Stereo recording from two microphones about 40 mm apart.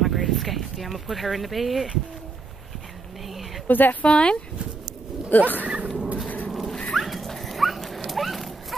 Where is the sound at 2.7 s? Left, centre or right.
Centre.